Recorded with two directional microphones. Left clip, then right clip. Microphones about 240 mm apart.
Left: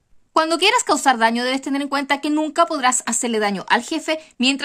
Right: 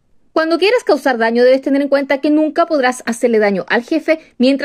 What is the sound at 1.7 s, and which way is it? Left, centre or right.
Speech, left.